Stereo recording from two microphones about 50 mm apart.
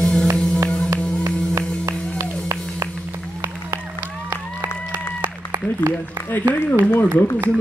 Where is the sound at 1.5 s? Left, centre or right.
Right.